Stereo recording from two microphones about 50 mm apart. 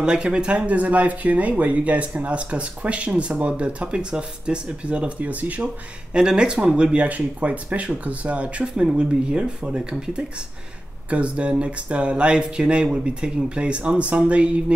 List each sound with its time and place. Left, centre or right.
0.0 s speech: centre
6.1 s speech: centre